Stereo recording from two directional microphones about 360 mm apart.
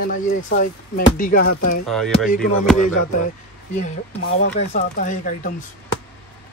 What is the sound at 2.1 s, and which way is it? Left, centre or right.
Speech, left.